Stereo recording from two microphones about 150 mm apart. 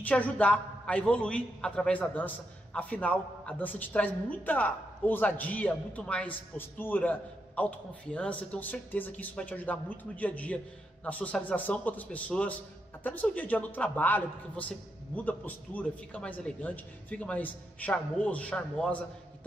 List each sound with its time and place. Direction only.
0.0 s a man's voice: 10° left (ahead or behind)